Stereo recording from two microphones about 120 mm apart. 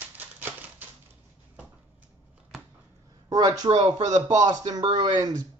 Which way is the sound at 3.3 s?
30° right (ahead or behind).